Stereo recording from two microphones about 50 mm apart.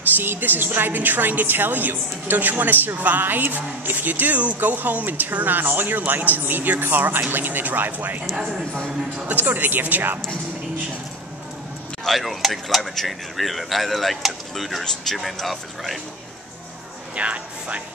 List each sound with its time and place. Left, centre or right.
0.2 s a woman's voice: right
9.3 s a woman's voice: right
12.0 s speech: centre
17.1 s speech: right